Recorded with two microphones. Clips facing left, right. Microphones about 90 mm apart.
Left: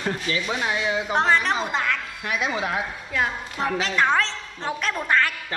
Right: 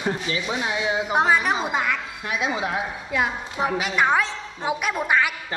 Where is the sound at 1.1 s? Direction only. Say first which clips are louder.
Right 1 dB; 10° right (ahead or behind).